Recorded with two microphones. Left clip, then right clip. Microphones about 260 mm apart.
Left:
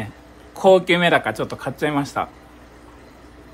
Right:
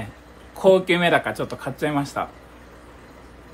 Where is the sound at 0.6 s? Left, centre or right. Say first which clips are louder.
Left 2 dB; left.